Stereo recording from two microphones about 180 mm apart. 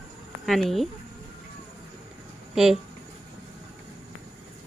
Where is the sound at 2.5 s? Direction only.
5° right (ahead or behind).